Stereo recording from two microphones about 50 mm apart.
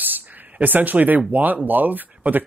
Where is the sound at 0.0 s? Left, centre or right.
Right.